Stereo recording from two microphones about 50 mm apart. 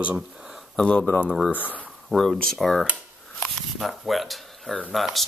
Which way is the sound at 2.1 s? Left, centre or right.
Centre.